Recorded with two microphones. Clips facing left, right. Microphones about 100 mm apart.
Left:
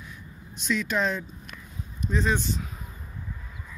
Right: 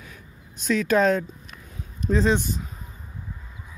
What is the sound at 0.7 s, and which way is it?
Speech, 50° right (ahead or behind).